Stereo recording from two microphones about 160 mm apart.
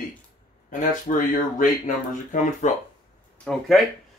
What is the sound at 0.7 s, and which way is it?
Speech, 55° left (ahead or behind).